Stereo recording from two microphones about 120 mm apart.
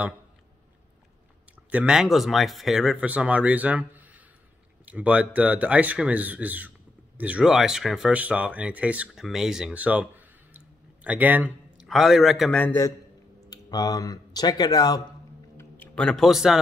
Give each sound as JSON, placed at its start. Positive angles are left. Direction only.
{"t": 1.7, "sound": "speech", "side_deg": -10}
{"t": 11.9, "sound": "a man's voice", "side_deg": 0}
{"t": 13.5, "sound": "speech", "side_deg": 30}
{"t": 15.5, "sound": "music", "side_deg": 10}